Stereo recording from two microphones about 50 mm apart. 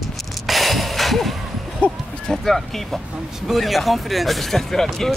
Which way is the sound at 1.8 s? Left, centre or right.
Left.